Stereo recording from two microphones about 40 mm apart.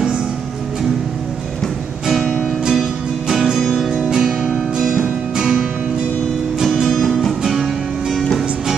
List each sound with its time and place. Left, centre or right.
2.7 s music: centre
6.6 s music: centre